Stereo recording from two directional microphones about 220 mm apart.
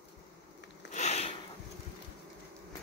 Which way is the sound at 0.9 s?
30° left (ahead or behind).